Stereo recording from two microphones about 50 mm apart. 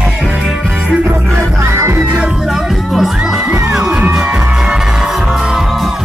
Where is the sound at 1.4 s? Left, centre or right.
Right.